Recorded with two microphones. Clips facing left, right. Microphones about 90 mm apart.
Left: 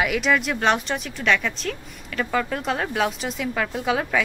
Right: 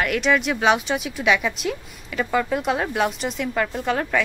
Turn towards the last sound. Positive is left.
turn(degrees=5)  # may be behind; listen again after turning